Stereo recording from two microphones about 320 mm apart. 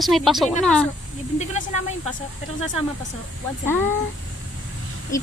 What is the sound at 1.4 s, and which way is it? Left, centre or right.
Speech, left.